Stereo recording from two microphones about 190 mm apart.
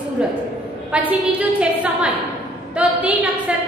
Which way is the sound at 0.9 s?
10° right (ahead or behind).